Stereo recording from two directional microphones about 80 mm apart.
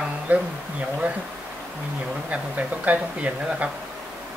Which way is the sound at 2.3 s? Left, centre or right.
Centre.